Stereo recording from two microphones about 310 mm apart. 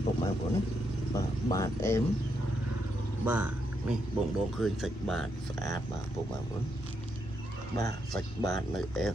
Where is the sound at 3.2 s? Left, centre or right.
Centre.